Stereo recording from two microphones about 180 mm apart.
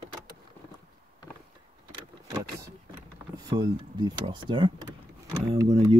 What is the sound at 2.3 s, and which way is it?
Vehicle, 20° right (ahead or behind).